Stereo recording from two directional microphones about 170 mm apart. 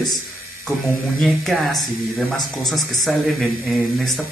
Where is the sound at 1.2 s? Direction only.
Centre (ahead or behind).